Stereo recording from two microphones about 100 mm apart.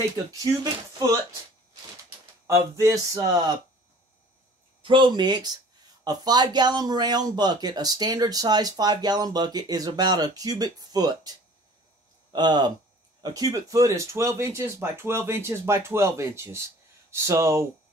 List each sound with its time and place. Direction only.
0.3 s speech: 35° right (ahead or behind)
2.4 s speech: 30° right (ahead or behind)
4.8 s speech: 55° right (ahead or behind); by 17.6 s 30° right (ahead or behind)